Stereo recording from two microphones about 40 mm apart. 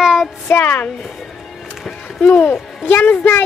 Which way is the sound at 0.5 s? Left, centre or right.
Left.